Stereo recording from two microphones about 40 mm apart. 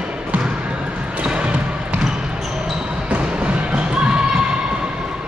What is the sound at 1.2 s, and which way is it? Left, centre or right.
Basketball bounce, right.